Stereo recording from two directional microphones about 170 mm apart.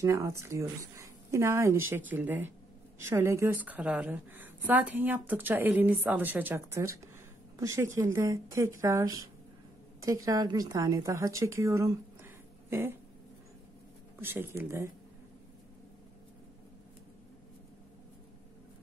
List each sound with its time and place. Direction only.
0.0 s a woman's voice: 20° right (ahead or behind)
14.2 s a woman's voice: 15° right (ahead or behind)